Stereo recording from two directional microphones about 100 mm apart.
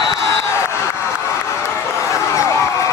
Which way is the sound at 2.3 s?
30° left (ahead or behind).